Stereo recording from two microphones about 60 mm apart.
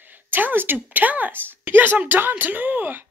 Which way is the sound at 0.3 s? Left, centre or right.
Right.